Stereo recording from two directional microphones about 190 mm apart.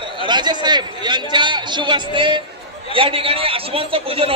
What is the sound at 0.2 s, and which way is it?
A man's voice, 25° right (ahead or behind).